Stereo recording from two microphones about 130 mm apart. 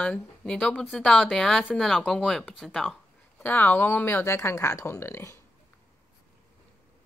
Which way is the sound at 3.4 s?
15° left (ahead or behind).